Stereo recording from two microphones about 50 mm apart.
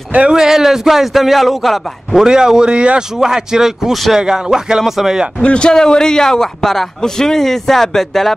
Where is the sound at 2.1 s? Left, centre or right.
Centre.